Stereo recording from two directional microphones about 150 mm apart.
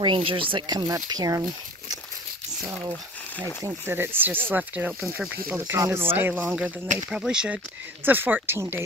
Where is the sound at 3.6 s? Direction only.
15° right (ahead or behind).